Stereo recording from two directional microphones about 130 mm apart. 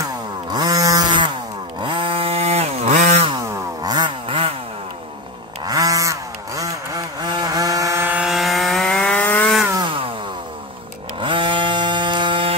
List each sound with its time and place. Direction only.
0.5 s chainsaw: 30° right (ahead or behind); by 2.9 s 55° right (ahead or behind)
2.9 s chainsaw: 65° right (ahead or behind)
3.5 s chainsaw: 30° right (ahead or behind)
5.7 s a sound: 30° right (ahead or behind)
7.2 s vehicle: 35° right (ahead or behind); by 9.5 s 10° left (ahead or behind)
9.8 s music: 45° right (ahead or behind)
11.1 s chainsaw: 40° right (ahead or behind)